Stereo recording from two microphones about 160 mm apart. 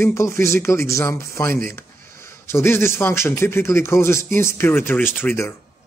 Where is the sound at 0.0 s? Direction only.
20° left (ahead or behind).